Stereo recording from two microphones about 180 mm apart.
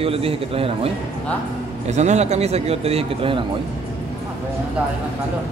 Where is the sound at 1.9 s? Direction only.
40° right (ahead or behind).